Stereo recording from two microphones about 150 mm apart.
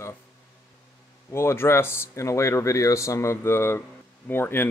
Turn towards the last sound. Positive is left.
turn(degrees=15)  # may be behind; listen again after turning